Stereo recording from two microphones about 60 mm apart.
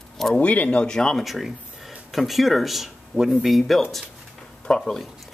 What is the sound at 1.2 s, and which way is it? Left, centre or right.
Speech, centre.